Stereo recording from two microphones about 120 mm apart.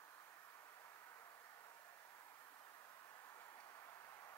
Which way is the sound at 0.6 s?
25° left (ahead or behind).